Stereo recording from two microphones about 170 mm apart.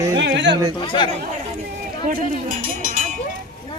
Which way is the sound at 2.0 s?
50° right (ahead or behind).